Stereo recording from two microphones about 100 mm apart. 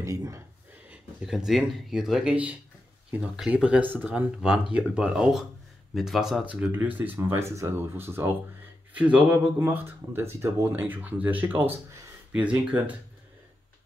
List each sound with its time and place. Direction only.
0.0 s speech: 35° right (ahead or behind)
0.8 s speech: 5° right (ahead or behind)
6.4 s speech: 15° right (ahead or behind)